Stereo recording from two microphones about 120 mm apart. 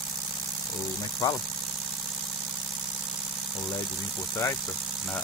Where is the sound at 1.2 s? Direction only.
35° left (ahead or behind).